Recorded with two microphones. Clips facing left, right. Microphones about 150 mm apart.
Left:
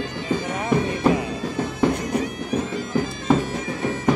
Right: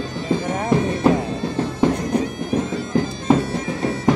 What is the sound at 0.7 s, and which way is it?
Music, 25° right (ahead or behind).